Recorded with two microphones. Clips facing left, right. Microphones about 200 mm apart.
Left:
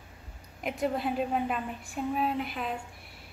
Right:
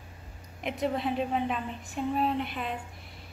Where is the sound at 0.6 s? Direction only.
Centre (ahead or behind).